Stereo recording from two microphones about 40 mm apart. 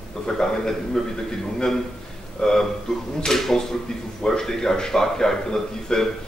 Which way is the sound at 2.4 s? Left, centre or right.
Centre.